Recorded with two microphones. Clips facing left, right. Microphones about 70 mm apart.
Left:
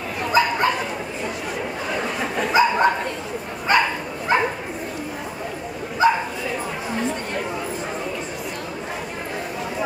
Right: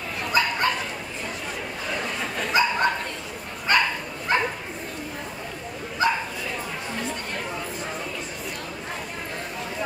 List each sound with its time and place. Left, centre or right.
0.2 s bow-wow: centre
2.0 s dog: centre
6.0 s bow-wow: centre